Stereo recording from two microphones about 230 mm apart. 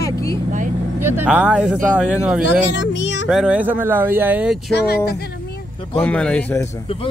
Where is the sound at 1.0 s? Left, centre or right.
Centre.